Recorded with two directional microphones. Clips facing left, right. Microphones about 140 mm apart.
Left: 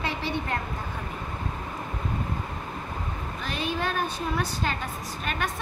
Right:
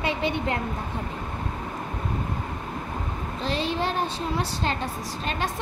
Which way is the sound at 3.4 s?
30° right (ahead or behind).